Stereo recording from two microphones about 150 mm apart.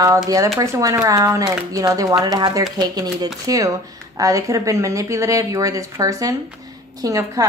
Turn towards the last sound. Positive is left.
turn(degrees=-20)  # may be behind; listen again after turning